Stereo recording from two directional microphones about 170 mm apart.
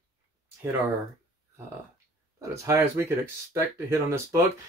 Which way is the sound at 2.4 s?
15° right (ahead or behind).